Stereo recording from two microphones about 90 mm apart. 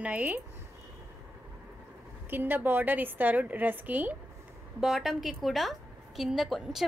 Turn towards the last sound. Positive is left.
turn(degrees=0)  # may be behind; listen again after turning